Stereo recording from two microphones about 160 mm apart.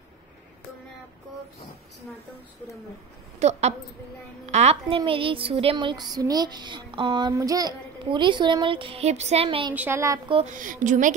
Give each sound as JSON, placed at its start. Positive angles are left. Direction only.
{"t": 3.3, "sound": "a woman's voice", "side_deg": -45}
{"t": 9.8, "sound": "speech", "side_deg": -15}
{"t": 10.4, "sound": "a woman's voice", "side_deg": -55}